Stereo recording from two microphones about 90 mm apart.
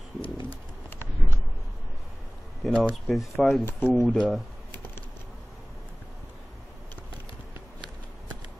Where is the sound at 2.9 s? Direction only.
Centre (ahead or behind).